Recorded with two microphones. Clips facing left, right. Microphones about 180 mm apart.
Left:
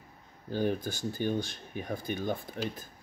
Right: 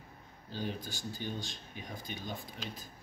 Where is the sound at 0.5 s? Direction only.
50° left (ahead or behind).